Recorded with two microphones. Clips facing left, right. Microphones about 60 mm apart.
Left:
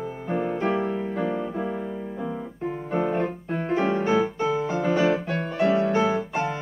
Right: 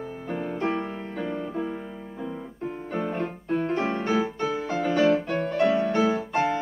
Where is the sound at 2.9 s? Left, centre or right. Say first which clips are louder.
Left 5 dB; centre.